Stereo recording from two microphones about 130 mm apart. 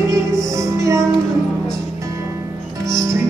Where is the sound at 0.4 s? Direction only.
25° right (ahead or behind).